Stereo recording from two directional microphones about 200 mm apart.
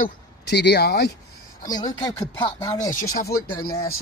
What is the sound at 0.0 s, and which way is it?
Speech, 55° left (ahead or behind).